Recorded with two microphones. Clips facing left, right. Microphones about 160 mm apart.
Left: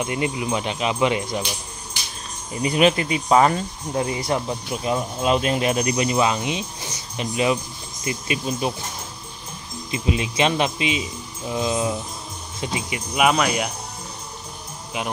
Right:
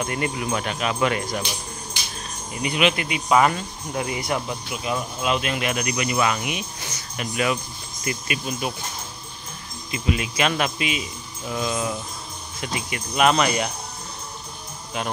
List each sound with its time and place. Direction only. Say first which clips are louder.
0.0 s speech: left 2 dB; 15° left (ahead or behind)
2.5 s speech: left 4 dB; 35° left (ahead or behind)
9.8 s speech: left 1 dB; 25° left (ahead or behind); by 13.7 s 5° left (ahead or behind)